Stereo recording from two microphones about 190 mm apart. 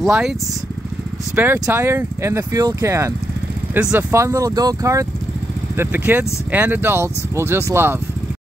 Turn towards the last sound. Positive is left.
turn(degrees=-15)  # may be behind; listen again after turning